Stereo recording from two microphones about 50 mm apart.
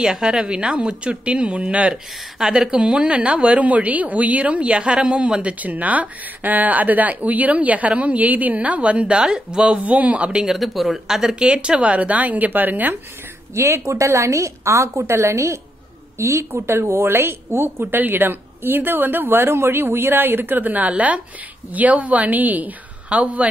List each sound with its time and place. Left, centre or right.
0.0 s a woman's voice: centre
2.3 s a woman's voice: centre
9.8 s a woman's voice: right
10.4 s a woman's voice: centre; by 12.9 s right
13.6 s a woman's voice: right
17.8 s a woman's voice: right